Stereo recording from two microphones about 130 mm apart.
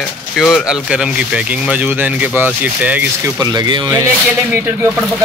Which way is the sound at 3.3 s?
35° right (ahead or behind).